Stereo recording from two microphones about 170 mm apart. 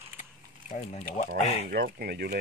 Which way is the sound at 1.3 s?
60° right (ahead or behind).